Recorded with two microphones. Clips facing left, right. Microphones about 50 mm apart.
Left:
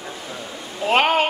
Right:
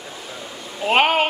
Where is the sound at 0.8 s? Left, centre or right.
Centre.